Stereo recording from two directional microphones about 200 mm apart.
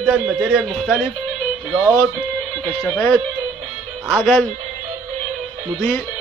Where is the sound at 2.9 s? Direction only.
10° left (ahead or behind).